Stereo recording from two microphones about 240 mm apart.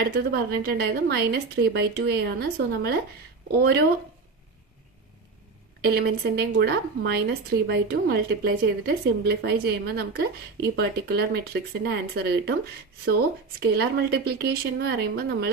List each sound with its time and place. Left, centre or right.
0.0 s a woman's voice: right
5.8 s a woman's voice: right
13.6 s speech: right